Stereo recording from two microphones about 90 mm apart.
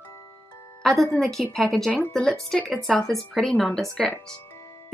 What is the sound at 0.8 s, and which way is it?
A woman's voice, centre (ahead or behind).